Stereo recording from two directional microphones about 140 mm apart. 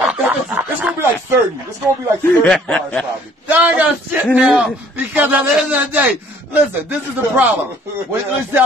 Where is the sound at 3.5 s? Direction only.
10° right (ahead or behind).